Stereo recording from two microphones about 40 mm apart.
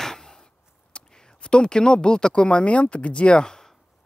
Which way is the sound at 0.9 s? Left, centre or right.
Left.